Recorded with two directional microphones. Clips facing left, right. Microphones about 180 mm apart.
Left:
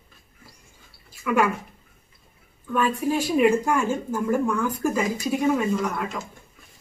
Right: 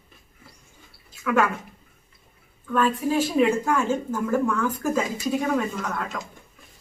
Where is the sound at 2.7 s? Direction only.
15° left (ahead or behind).